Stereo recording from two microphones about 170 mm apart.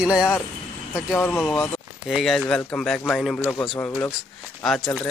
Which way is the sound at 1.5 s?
5° left (ahead or behind).